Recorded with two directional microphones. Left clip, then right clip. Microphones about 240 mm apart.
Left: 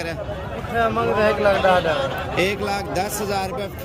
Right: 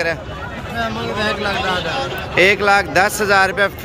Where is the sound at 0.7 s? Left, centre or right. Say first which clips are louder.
Left 3 dB; left.